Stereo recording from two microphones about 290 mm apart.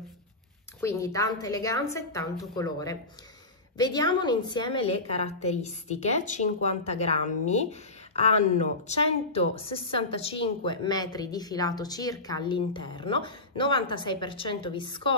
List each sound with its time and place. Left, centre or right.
0.7 s a woman's voice: centre